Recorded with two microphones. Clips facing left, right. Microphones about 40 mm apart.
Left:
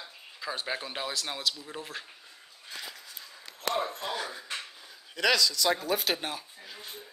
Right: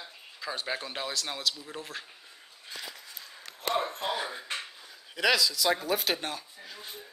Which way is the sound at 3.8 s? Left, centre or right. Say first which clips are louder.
Right 2 dB; right.